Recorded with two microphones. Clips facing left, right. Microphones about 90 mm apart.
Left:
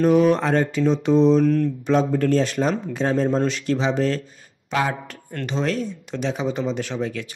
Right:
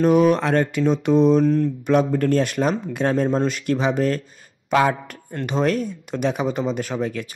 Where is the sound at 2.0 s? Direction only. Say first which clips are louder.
Even; 55° right (ahead or behind).